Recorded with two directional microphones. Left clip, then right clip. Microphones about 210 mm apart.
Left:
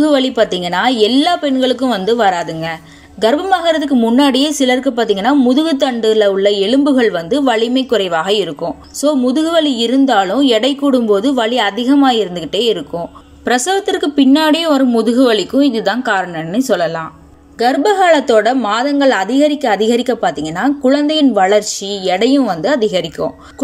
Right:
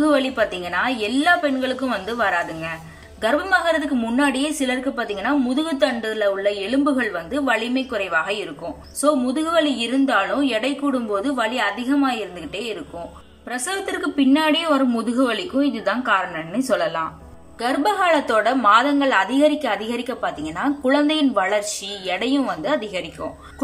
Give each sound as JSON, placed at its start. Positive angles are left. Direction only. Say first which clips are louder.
{"t": 0.0, "sound": "a woman's voice", "louder": "left 6 dB", "side_deg": 25}